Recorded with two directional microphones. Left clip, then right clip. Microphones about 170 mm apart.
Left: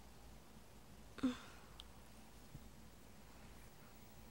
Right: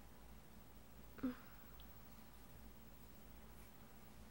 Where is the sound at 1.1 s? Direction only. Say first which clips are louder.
Left 5 dB; 15° left (ahead or behind).